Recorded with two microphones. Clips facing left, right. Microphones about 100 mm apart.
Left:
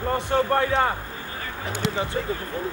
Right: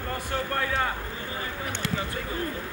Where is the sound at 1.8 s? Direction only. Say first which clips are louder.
Left 5 dB; 20° left (ahead or behind).